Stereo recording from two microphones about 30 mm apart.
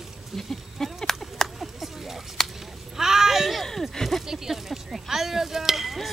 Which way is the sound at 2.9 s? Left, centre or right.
Centre.